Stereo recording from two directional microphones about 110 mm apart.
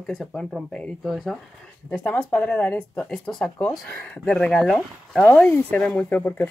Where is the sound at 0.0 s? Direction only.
5° left (ahead or behind).